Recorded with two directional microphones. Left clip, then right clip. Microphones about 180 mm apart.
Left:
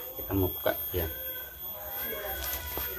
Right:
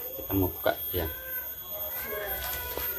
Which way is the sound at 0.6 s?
15° right (ahead or behind).